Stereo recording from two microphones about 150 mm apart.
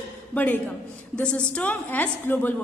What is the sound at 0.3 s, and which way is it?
A man's voice, 10° left (ahead or behind).